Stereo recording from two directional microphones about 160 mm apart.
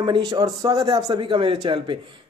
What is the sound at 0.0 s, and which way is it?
Speech, 25° right (ahead or behind).